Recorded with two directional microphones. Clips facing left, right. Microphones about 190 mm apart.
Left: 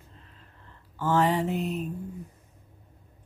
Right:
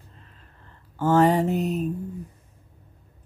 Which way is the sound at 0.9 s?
45° right (ahead or behind).